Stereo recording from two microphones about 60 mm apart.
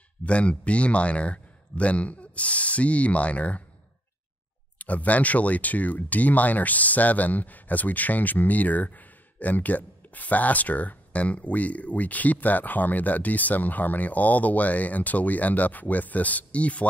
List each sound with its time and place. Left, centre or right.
0.2 s speech: left
4.7 s speech: left